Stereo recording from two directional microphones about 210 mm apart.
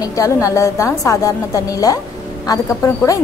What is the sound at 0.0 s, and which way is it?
A woman's voice, 15° left (ahead or behind).